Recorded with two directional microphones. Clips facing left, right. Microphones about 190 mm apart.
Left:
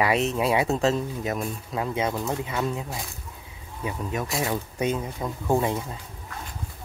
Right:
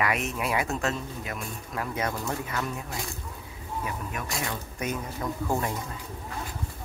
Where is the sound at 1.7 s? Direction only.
20° left (ahead or behind).